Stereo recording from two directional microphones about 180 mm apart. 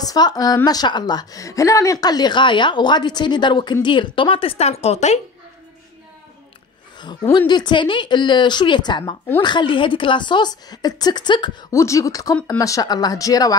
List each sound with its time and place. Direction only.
0.0 s a woman's voice: 20° left (ahead or behind); by 5.2 s 40° left (ahead or behind)
7.2 s a woman's voice: 25° left (ahead or behind)